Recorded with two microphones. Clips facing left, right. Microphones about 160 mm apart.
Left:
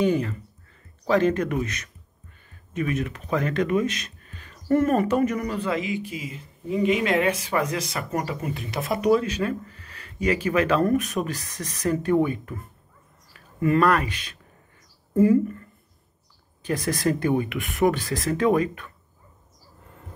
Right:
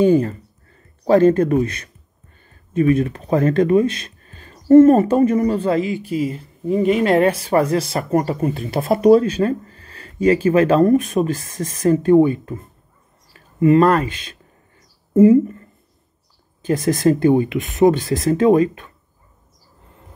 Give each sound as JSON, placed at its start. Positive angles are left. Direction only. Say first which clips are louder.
{"t": 0.0, "sound": "speech", "louder": "right 8 dB", "side_deg": -35}
{"t": 6.3, "sound": "a woman's voice", "louder": "right 7 dB", "side_deg": -45}